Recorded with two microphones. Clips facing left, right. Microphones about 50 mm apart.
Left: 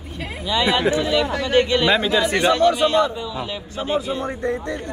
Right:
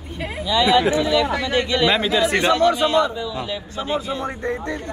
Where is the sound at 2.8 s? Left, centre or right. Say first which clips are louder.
Even; left.